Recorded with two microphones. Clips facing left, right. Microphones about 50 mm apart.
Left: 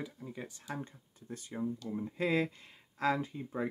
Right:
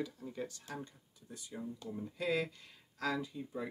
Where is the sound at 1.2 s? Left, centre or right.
Left.